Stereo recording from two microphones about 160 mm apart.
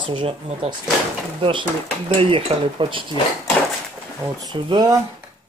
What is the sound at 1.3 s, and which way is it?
Speech, 30° right (ahead or behind).